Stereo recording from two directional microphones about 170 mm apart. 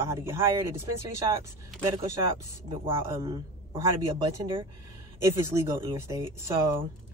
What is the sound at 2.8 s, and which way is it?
A man's voice, 15° right (ahead or behind).